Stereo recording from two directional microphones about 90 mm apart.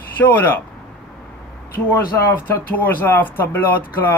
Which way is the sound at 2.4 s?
20° left (ahead or behind).